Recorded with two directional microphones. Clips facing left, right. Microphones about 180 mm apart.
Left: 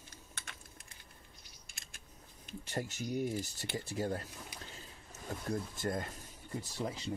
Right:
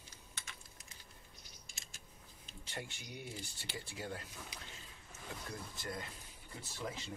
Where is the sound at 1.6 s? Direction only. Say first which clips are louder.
Left 1 dB; 55° left (ahead or behind).